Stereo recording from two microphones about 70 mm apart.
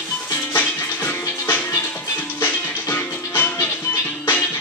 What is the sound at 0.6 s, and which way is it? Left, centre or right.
Music, left.